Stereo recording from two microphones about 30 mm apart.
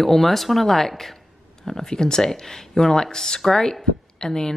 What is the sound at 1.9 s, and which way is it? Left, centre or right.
Speech, left.